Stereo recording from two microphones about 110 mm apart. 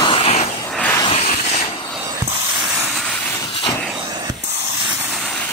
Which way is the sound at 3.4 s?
55° left (ahead or behind).